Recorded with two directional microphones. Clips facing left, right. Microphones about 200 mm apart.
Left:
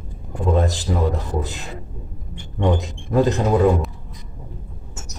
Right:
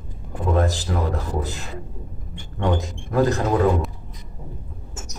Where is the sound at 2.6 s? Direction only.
20° left (ahead or behind).